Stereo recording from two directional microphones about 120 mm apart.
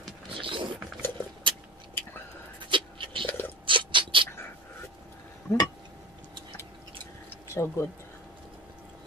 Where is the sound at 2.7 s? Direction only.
45° right (ahead or behind).